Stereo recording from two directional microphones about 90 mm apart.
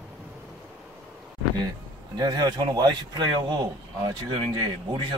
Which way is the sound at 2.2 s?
45° right (ahead or behind).